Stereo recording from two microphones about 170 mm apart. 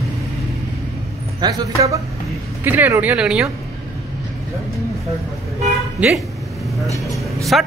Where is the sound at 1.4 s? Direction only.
25° right (ahead or behind); by 3.5 s 5° right (ahead or behind).